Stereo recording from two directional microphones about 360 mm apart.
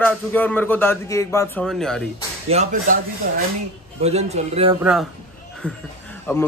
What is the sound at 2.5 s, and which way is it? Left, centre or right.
Speech, centre.